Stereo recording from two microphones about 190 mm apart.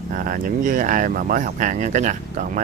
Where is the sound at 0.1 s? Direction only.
45° right (ahead or behind).